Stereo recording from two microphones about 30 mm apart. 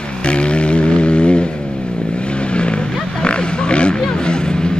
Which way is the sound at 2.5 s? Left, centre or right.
Left.